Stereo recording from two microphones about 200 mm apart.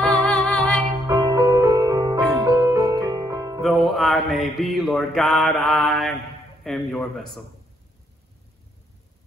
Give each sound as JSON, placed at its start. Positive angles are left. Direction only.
{"t": 0.0, "sound": "music", "side_deg": 5}
{"t": 1.0, "sound": "music", "side_deg": -20}
{"t": 3.6, "sound": "mantra", "side_deg": 0}
{"t": 6.6, "sound": "speech", "side_deg": 0}